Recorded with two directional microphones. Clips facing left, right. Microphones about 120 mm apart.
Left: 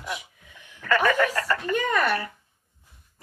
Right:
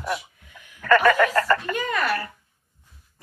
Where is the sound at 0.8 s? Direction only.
50° right (ahead or behind).